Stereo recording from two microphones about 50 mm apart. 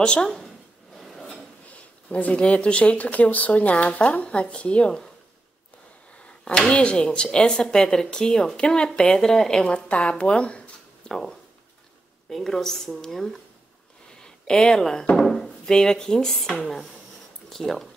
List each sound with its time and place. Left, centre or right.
0.0 s a woman's voice: centre
0.9 s filing: centre
2.0 s speech: left
6.2 s speech: centre
9.7 s speech: left
11.1 s speech: centre